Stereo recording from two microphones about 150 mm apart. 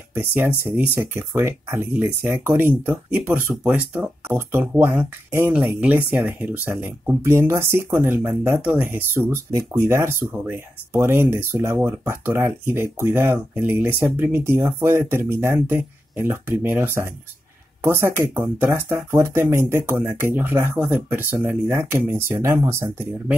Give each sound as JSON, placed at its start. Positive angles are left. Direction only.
{"t": 0.1, "sound": "speech", "side_deg": -10}